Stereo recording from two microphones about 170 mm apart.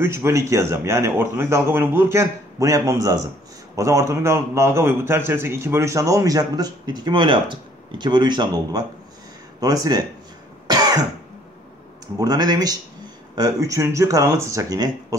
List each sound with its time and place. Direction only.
0.0 s a man's voice: 15° right (ahead or behind)
12.2 s speech: 20° right (ahead or behind)